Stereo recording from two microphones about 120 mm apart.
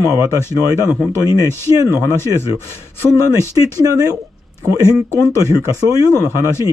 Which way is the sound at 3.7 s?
30° right (ahead or behind).